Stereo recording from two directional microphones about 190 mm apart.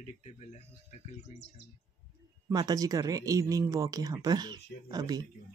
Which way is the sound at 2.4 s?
20° right (ahead or behind).